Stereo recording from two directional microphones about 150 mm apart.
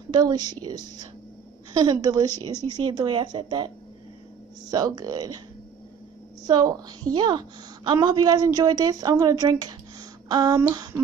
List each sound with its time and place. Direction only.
0.1 s a woman's voice: 25° right (ahead or behind)
6.4 s a woman's voice: 25° right (ahead or behind)